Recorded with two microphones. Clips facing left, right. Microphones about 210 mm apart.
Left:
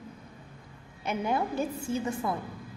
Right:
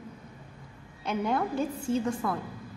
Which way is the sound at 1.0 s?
5° left (ahead or behind).